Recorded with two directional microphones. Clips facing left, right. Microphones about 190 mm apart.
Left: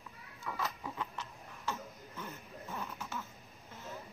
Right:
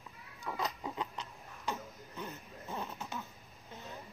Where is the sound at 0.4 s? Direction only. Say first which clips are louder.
Right 2 dB; 15° right (ahead or behind).